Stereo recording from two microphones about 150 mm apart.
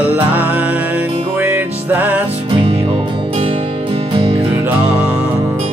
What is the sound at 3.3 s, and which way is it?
Music, 35° right (ahead or behind).